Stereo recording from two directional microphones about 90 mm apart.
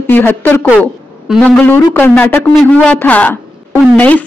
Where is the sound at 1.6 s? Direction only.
20° left (ahead or behind).